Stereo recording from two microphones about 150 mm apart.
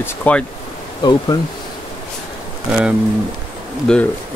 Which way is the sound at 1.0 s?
30° left (ahead or behind).